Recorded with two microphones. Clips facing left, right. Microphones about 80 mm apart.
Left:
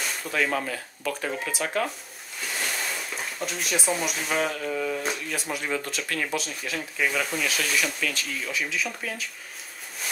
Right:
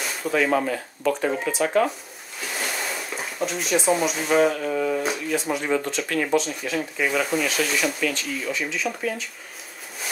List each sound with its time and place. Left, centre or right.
0.0 s speech: centre
5.0 s speech: centre